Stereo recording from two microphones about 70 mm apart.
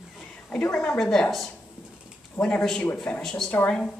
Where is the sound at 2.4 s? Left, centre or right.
Left.